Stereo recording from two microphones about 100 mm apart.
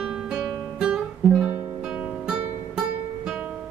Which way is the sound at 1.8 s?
10° right (ahead or behind).